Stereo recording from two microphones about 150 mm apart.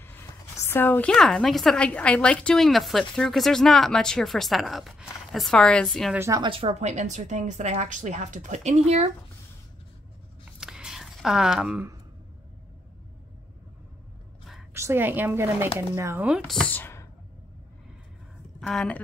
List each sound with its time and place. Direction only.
0.0 s a woman's voice: 15° left (ahead or behind)
6.1 s speech: 20° right (ahead or behind)
6.4 s a woman's voice: 35° right (ahead or behind)
10.6 s a sound: 5° right (ahead or behind)
14.7 s speech: 15° right (ahead or behind)
16.4 s speech: 5° left (ahead or behind)
18.6 s speech: 5° left (ahead or behind)